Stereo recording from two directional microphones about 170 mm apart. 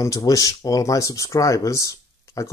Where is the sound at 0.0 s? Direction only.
20° left (ahead or behind).